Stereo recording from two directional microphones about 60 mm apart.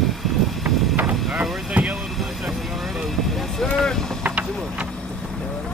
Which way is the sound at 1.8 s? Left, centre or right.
Right.